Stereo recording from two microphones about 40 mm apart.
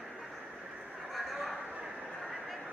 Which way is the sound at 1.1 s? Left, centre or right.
Centre.